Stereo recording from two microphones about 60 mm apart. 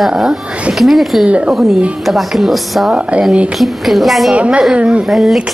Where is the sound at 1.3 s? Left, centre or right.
Right.